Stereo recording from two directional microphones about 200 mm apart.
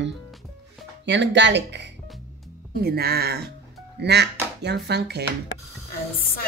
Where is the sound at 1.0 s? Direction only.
60° right (ahead or behind).